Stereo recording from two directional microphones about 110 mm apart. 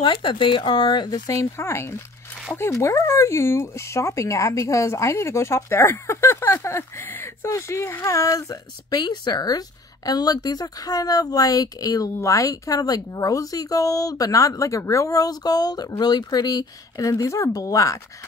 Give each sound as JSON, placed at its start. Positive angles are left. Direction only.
{"t": 0.0, "sound": "speech", "side_deg": 50}